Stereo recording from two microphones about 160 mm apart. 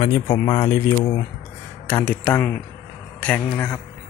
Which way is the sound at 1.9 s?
10° left (ahead or behind).